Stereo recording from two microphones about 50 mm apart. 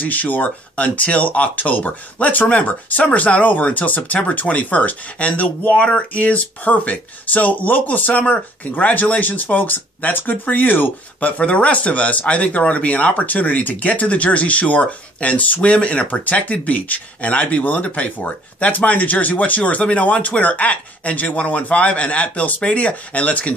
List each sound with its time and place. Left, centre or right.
0.0 s speech: left